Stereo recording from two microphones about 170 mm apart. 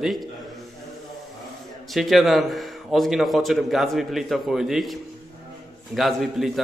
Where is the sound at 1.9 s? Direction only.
Centre (ahead or behind).